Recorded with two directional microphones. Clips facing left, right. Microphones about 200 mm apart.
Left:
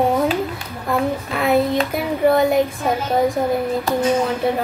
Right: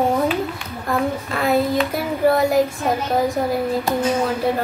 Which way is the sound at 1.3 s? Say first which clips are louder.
Left 2 dB; centre (ahead or behind).